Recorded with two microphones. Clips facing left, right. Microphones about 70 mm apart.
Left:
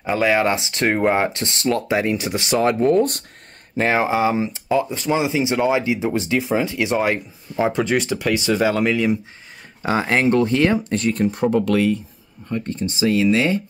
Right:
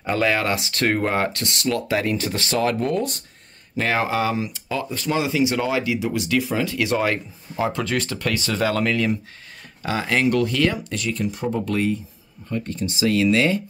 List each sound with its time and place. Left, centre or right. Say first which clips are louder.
0.0 s speech: left 3 dB; centre
9.8 s speech: left 3 dB; left
11.5 s speech: left 4 dB; left
12.4 s speech: left 2 dB; left